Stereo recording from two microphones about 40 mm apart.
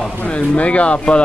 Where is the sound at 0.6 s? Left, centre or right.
Left.